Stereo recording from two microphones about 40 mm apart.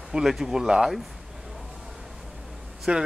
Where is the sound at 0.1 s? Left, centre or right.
Centre.